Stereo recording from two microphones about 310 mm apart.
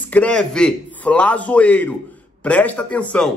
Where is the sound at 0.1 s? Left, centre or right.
Centre.